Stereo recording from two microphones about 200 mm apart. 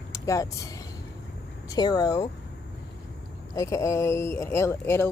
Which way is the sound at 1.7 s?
20° left (ahead or behind).